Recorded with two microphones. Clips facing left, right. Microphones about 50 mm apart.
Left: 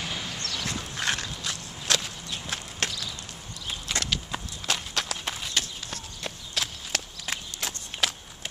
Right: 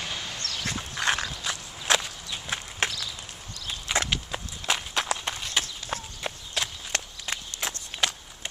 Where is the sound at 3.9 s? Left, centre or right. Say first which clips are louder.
Right 3 dB; centre.